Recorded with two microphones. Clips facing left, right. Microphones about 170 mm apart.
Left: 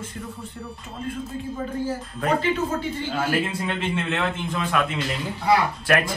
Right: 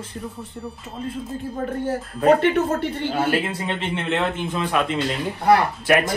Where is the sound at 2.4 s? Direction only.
60° right (ahead or behind).